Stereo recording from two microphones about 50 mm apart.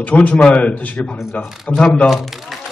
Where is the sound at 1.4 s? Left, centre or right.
Centre.